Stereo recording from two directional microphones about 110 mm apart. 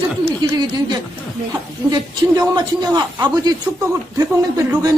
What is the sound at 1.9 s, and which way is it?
Speech, 35° right (ahead or behind).